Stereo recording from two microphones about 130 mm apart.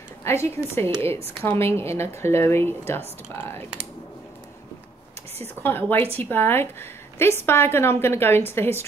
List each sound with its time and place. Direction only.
0.2 s a woman's voice: 20° left (ahead or behind)
5.6 s a woman's voice: 15° left (ahead or behind)